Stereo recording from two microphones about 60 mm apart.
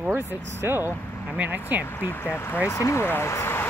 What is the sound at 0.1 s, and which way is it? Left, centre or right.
Speech, right.